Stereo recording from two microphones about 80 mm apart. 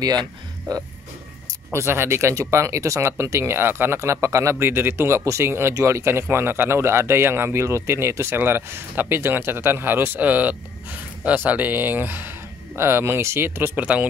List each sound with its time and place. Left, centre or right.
0.0 s speech: right
1.7 s speech: right
13.7 s speech: centre